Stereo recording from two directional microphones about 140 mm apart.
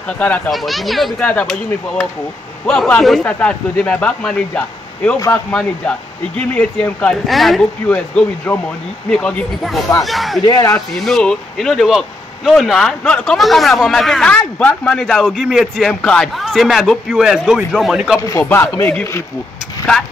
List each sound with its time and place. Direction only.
0.2 s a man's voice: 5° left (ahead or behind)
10.4 s speech: 25° left (ahead or behind)
11.1 s speech: 5° left (ahead or behind)
18.4 s speech: 20° left (ahead or behind)